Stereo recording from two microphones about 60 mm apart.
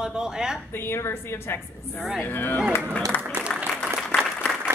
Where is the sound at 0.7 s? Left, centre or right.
Left.